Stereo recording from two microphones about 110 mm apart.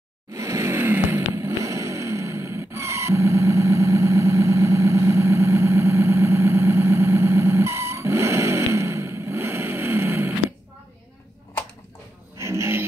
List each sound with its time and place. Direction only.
0.3 s vehicle: 30° right (ahead or behind)
12.4 s music: 25° right (ahead or behind)